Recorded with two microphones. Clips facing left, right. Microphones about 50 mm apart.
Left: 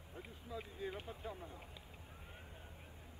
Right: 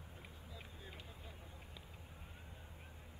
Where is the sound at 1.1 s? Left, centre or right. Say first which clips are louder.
Left 9 dB; left.